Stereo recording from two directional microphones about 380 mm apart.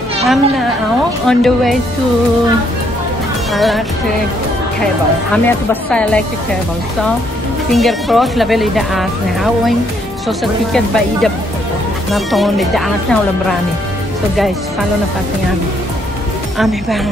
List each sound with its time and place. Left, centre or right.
0.2 s speech: centre
3.5 s speech: centre
5.3 s speech: centre
7.7 s speech: centre
12.1 s speech: centre